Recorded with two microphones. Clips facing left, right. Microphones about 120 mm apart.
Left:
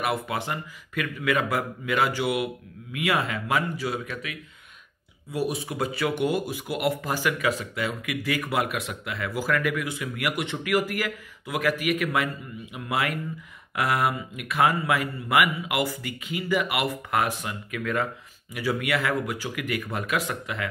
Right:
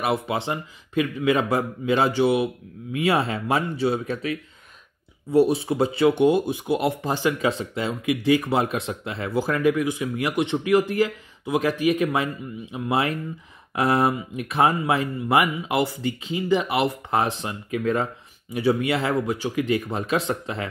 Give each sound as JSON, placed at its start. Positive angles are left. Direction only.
{"t": 0.0, "sound": "speech", "side_deg": -25}